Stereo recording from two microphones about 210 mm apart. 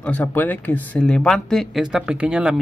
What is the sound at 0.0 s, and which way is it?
Speech, 5° left (ahead or behind).